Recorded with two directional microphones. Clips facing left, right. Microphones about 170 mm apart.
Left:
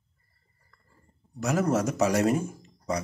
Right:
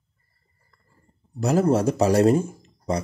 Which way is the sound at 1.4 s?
30° right (ahead or behind).